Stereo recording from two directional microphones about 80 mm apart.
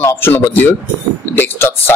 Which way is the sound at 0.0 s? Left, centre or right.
Left.